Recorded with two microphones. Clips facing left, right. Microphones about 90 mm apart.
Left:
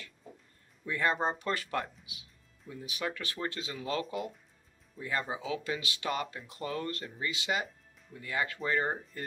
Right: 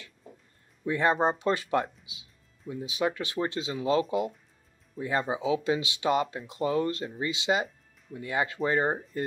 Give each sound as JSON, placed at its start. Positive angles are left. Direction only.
{"t": 0.8, "sound": "speech", "side_deg": -25}